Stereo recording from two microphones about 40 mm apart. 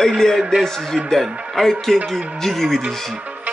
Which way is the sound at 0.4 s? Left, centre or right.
Centre.